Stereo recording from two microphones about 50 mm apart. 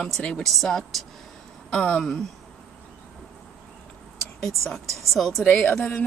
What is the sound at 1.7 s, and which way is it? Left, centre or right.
Speech, centre.